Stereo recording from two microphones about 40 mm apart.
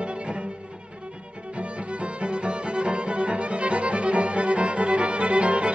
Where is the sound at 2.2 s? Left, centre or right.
Right.